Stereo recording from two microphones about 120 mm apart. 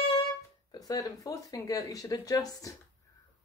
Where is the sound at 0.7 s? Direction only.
30° left (ahead or behind).